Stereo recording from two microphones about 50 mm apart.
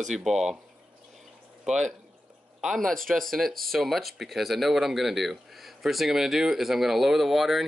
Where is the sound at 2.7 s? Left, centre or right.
Centre.